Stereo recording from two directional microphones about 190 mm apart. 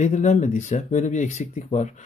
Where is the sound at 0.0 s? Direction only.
40° left (ahead or behind).